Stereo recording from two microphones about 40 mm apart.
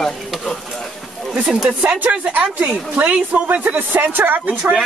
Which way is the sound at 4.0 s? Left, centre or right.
Right.